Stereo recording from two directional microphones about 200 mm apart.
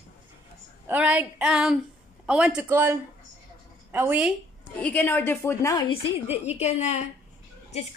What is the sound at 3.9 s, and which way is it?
Speech, 10° right (ahead or behind).